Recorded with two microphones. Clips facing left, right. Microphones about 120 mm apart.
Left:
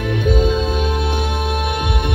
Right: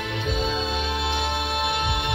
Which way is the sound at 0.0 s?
50° left (ahead or behind).